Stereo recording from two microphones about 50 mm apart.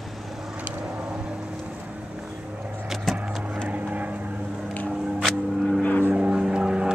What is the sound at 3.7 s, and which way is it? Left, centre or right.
Vehicle, right.